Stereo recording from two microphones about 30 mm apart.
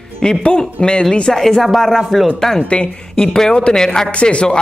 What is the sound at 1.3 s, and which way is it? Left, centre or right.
Speech, centre.